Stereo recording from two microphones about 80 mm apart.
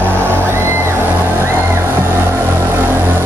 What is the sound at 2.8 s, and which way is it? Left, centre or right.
Vehicle, right.